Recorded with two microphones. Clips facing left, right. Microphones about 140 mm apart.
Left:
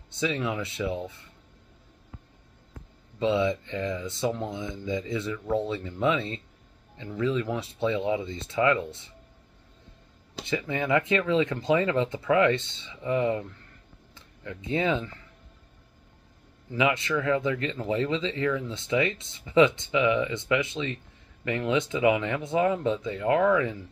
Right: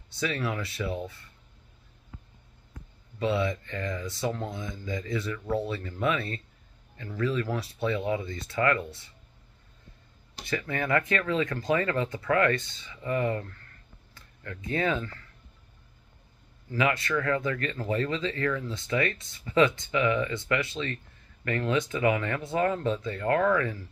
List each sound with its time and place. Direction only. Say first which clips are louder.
0.1 s speech: left 2 dB; 20° left (ahead or behind)
3.2 s speech: left 3 dB; 20° left (ahead or behind)
10.4 s speech: left 2 dB; 20° left (ahead or behind)
16.7 s speech: left 1 dB; 20° left (ahead or behind)